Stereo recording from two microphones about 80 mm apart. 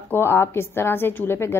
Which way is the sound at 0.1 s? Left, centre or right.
Left.